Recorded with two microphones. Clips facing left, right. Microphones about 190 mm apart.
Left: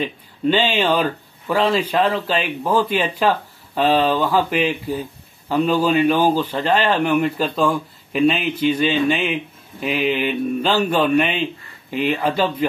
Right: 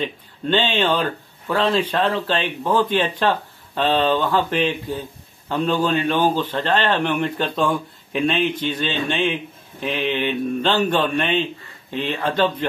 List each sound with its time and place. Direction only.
0.0 s speech: 10° left (ahead or behind)